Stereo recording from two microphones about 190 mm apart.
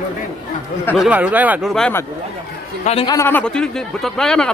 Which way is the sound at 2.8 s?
35° left (ahead or behind).